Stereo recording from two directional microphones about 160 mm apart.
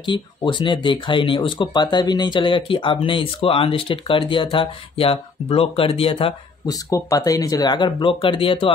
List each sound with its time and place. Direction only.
0.0 s speech: 30° left (ahead or behind)